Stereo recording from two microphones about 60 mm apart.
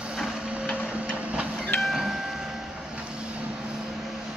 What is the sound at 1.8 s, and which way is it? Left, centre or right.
Printer, centre.